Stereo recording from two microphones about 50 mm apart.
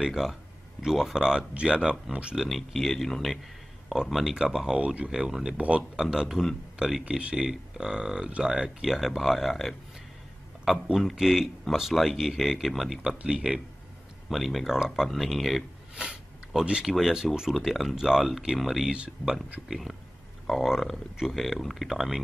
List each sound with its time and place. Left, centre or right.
0.0 s speech: centre
4.7 s speech: right
5.1 s speech: centre
5.6 s speech: right
5.9 s speech: centre
7.1 s speech: centre
10.6 s speech: centre
14.3 s speech: centre
15.9 s a sound: centre
16.8 s speech: centre